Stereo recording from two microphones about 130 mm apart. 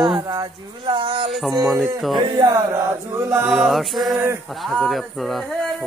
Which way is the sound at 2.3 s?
25° right (ahead or behind).